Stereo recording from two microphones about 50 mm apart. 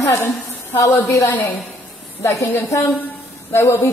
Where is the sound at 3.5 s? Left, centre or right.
Left.